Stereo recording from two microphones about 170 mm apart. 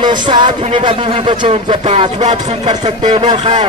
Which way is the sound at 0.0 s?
25° right (ahead or behind).